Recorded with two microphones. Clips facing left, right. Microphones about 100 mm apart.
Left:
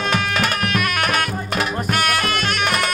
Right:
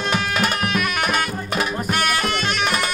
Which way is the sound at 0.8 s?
5° right (ahead or behind).